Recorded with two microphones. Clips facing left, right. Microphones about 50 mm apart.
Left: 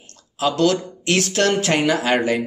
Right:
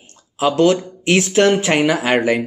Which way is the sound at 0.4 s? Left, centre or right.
Right.